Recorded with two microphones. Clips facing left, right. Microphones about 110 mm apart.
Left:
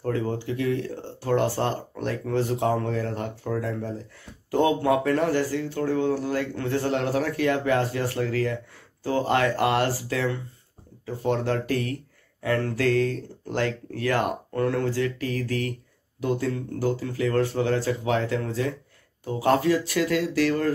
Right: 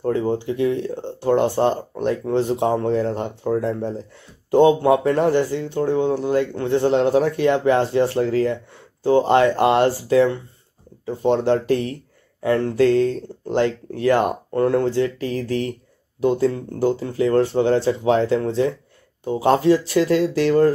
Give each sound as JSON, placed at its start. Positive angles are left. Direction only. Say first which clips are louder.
{"t": 0.0, "sound": "speech", "louder": "right 6 dB", "side_deg": -20}